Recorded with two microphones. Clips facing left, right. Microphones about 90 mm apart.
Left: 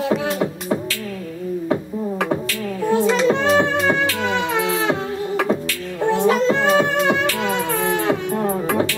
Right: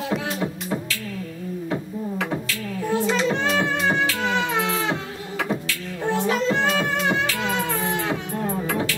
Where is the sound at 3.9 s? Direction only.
50° left (ahead or behind).